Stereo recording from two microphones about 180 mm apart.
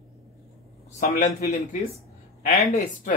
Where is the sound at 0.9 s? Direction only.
45° left (ahead or behind).